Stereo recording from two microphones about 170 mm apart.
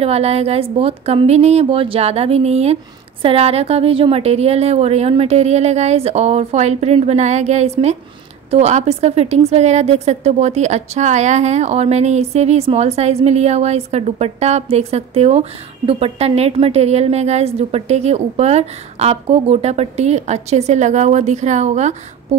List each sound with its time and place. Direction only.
0.0 s a woman's voice: 40° right (ahead or behind)